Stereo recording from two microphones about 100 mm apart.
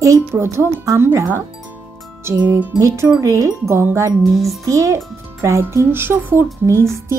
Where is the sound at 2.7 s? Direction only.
30° right (ahead or behind).